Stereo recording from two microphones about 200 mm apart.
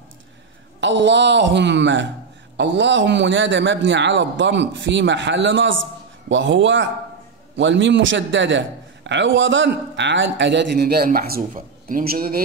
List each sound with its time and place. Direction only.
0.7 s a man's voice: 65° right (ahead or behind)